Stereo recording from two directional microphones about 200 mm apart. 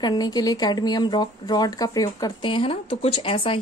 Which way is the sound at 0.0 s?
20° left (ahead or behind).